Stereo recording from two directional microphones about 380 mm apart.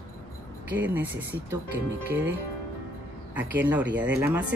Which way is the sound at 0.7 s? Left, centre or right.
Centre.